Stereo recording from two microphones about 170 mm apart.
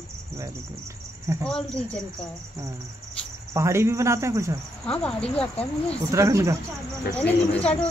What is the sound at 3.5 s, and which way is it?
Speech, 15° right (ahead or behind).